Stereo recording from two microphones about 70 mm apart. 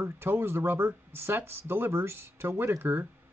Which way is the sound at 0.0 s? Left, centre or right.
Right.